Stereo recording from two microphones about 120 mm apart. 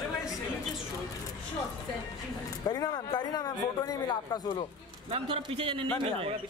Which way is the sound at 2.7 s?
35° left (ahead or behind).